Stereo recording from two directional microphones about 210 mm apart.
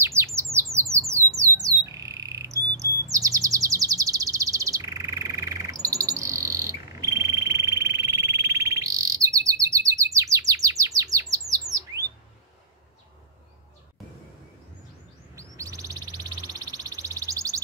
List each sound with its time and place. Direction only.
0.0 s bird: 15° right (ahead or behind)
0.6 s squawk: 15° right (ahead or behind)
10.1 s chirp: 15° right (ahead or behind)
15.3 s bird: 15° right (ahead or behind)